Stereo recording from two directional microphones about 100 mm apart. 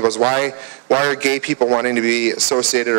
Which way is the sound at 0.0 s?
30° right (ahead or behind).